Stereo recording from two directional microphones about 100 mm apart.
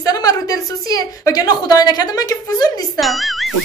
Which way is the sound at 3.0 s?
Centre (ahead or behind).